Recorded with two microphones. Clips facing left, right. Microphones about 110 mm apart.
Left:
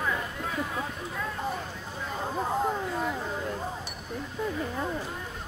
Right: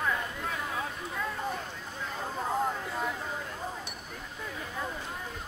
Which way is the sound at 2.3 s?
15° left (ahead or behind).